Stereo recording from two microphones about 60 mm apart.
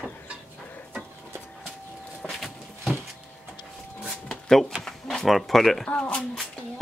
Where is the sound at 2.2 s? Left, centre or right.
Centre.